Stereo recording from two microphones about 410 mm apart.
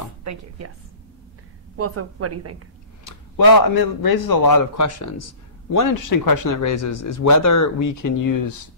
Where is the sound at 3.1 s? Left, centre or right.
Left.